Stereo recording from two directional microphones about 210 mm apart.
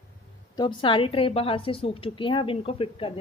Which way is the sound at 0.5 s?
25° left (ahead or behind).